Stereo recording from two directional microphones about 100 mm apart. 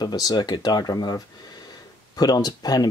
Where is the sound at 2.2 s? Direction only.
40° left (ahead or behind).